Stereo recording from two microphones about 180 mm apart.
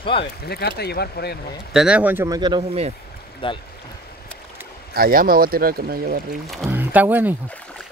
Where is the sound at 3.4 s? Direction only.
30° left (ahead or behind).